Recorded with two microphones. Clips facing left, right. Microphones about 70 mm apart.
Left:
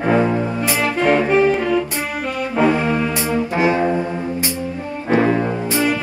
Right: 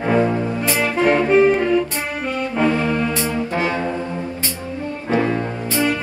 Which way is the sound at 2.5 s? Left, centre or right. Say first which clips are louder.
Left 3 dB; centre.